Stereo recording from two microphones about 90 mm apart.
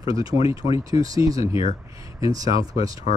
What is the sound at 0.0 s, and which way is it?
Speech, 80° left.